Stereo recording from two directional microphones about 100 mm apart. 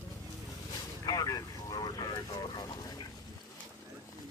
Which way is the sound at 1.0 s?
40° left (ahead or behind).